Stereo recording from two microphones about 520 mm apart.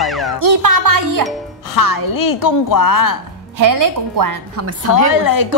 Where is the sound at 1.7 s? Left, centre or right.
Left.